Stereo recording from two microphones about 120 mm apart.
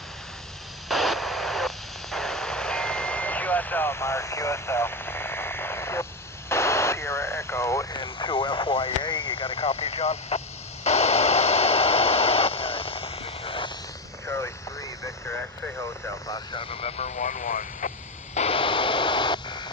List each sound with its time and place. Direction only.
0.8 s radio: centre (ahead or behind); by 8.0 s 25° left (ahead or behind)
8.0 s a sound: 45° left (ahead or behind)
14.2 s vehicle: 20° left (ahead or behind)
15.2 s speech: 15° left (ahead or behind)
15.8 s speech: 30° left (ahead or behind)
16.5 s vehicle: 55° left (ahead or behind)